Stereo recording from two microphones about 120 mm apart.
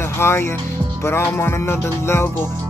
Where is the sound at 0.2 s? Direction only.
20° left (ahead or behind).